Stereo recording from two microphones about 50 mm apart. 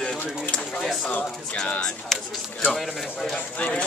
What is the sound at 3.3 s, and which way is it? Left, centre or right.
Speech, left.